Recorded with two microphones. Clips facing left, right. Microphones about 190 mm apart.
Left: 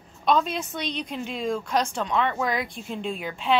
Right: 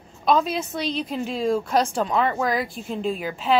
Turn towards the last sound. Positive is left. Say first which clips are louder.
# right 3 dB
turn(degrees=0)  # may be behind; listen again after turning